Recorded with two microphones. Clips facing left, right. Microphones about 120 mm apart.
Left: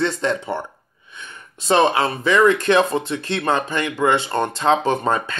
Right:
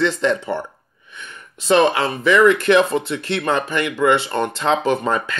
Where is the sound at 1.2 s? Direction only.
30° left (ahead or behind).